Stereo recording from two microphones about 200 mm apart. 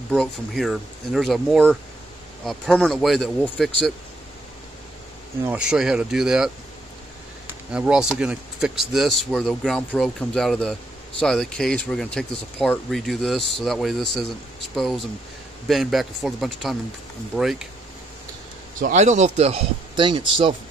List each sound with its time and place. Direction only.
0.1 s speech: centre (ahead or behind)
5.4 s speech: 5° right (ahead or behind)
7.7 s speech: 5° right (ahead or behind)
18.8 s speech: 40° right (ahead or behind)